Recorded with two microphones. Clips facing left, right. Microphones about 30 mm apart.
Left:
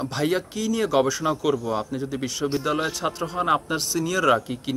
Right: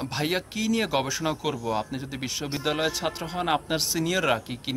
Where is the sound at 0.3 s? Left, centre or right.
Right.